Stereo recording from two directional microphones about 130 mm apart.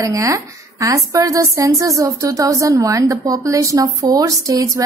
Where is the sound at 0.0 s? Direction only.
25° right (ahead or behind).